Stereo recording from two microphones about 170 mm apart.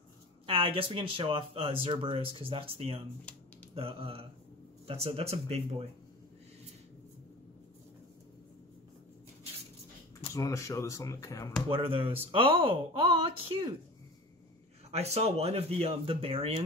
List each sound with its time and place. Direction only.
0.5 s speech: 30° right (ahead or behind)
10.3 s speech: 20° left (ahead or behind)
11.7 s speech: 30° right (ahead or behind)
14.9 s speech: 40° right (ahead or behind)